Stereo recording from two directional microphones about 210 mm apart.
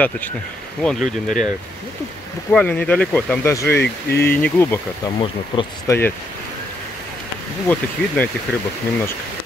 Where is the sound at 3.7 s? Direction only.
50° left (ahead or behind).